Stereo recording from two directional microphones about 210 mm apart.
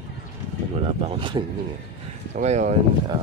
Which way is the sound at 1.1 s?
25° right (ahead or behind).